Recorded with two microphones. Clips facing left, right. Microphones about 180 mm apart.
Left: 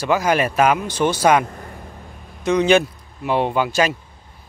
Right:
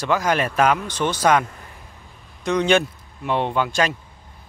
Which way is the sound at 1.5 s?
40° left (ahead or behind).